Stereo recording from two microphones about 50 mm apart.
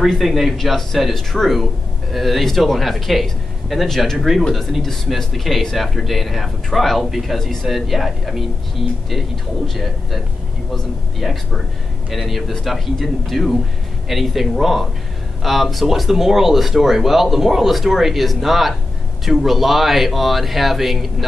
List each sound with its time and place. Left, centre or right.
0.0 s speech: centre
10.7 s speech: centre